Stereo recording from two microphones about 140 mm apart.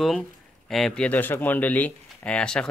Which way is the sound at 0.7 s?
5° left (ahead or behind).